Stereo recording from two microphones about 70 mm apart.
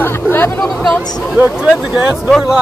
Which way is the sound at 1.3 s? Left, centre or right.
Centre.